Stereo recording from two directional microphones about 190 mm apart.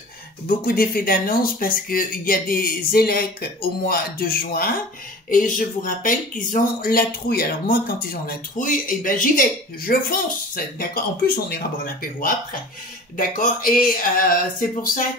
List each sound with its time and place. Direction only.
0.5 s speech: 50° left (ahead or behind)